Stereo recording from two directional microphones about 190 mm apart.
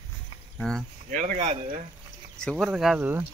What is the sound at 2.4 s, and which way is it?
Speech, centre (ahead or behind).